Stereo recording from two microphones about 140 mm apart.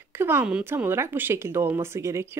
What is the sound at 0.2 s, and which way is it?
Speech, 15° right (ahead or behind).